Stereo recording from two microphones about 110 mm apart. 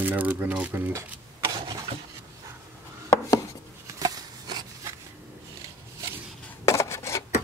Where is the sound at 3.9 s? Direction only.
30° right (ahead or behind).